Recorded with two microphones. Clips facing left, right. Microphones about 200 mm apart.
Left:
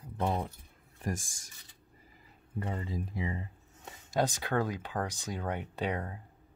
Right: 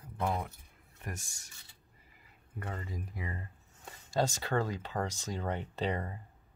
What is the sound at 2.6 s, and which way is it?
Speech, 20° left (ahead or behind).